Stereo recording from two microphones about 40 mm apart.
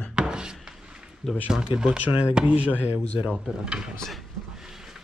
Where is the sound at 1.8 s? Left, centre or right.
Right.